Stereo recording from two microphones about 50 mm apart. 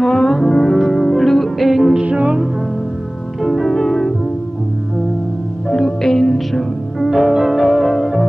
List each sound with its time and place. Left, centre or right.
0.0 s music: centre
2.0 s music: right
3.4 s harp: centre
3.7 s music: centre
5.7 s music: centre
7.1 s music: centre